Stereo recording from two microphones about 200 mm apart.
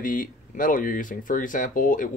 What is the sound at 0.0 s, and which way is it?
Speech, 45° left (ahead or behind).